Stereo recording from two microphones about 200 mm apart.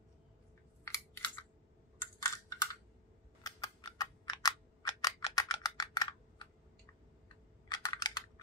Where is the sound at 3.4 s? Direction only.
20° left (ahead or behind).